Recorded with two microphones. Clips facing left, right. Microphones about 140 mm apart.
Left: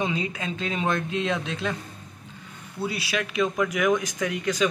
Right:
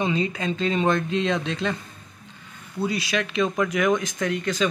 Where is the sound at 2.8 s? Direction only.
5° left (ahead or behind).